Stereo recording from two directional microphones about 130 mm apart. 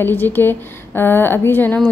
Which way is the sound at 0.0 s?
15° left (ahead or behind).